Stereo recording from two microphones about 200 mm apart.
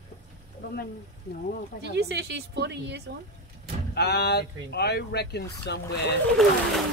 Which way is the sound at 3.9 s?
55° left (ahead or behind).